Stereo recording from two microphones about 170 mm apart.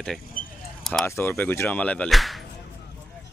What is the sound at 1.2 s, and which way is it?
Speech, 10° left (ahead or behind).